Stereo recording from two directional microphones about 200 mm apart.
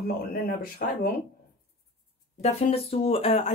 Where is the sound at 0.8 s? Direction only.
50° left (ahead or behind).